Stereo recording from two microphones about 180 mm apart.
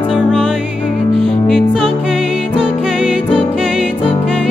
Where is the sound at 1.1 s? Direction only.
Centre (ahead or behind).